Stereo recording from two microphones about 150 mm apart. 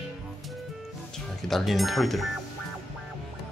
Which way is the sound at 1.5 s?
Centre (ahead or behind).